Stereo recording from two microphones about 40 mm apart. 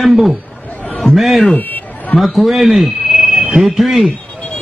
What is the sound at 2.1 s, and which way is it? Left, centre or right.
A man's voice, centre.